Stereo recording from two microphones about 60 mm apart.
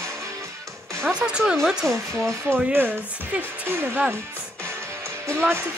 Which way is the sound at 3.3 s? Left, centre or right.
Right.